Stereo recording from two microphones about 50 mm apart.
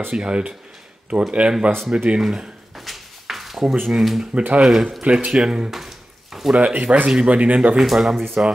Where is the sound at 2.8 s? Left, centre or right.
Centre.